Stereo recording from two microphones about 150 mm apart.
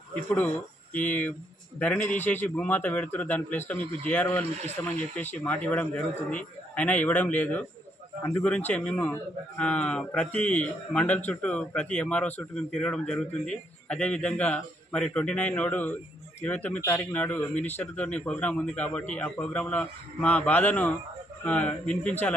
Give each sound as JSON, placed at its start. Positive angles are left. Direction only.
{"t": 0.1, "sound": "a man's voice", "side_deg": 10}